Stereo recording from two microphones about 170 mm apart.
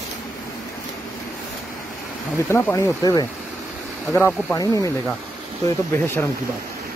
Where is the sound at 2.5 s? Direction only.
15° left (ahead or behind).